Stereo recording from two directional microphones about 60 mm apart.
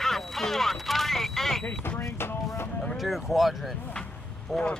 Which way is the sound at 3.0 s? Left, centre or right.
Centre.